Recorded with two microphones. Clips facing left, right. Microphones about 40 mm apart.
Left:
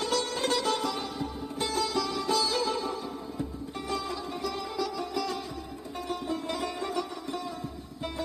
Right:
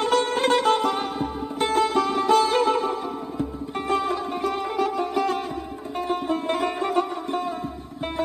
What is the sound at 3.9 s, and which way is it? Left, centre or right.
Music, right.